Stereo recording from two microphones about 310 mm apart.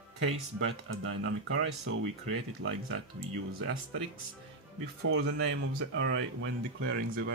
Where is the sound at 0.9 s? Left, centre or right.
Right.